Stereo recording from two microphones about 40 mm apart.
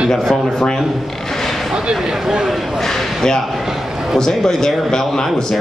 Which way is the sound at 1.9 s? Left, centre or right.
Centre.